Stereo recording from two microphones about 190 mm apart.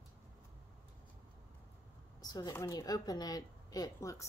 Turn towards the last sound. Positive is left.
turn(degrees=20)  # may be behind; listen again after turning